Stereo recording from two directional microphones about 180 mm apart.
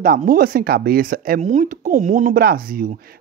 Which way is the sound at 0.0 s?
50° right (ahead or behind).